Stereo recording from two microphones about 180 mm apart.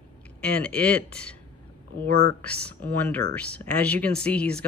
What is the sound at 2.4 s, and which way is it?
Speech, 10° left (ahead or behind).